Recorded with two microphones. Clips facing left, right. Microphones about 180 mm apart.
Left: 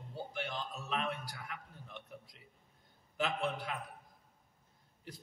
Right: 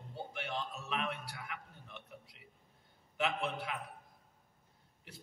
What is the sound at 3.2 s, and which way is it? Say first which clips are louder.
Speech: even; 35° left (ahead or behind).